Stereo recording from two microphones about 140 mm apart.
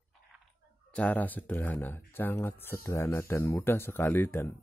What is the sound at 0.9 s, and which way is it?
Speech, 10° left (ahead or behind).